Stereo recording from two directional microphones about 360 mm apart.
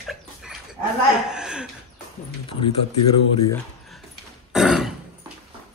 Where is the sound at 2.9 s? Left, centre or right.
Left.